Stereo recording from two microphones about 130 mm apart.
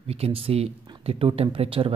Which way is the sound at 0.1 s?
50° right (ahead or behind).